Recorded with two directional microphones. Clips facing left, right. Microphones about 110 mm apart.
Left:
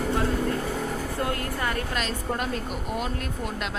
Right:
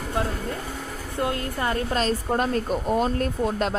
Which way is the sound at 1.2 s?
25° right (ahead or behind).